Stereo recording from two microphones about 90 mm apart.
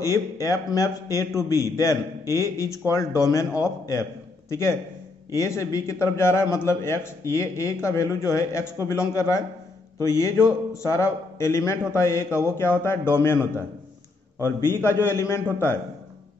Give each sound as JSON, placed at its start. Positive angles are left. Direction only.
{"t": 0.0, "sound": "a man's voice", "side_deg": 35}